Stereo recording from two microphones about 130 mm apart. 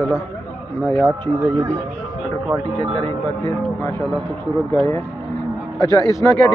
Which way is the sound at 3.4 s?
25° left (ahead or behind).